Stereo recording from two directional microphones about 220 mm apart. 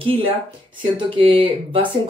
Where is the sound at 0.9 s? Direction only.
25° right (ahead or behind).